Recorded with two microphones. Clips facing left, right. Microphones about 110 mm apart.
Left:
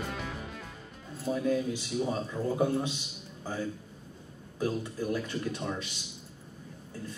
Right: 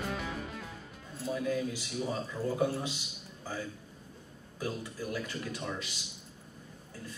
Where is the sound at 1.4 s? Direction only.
25° left (ahead or behind).